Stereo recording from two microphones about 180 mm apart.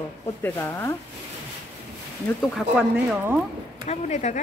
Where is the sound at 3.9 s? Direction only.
40° left (ahead or behind).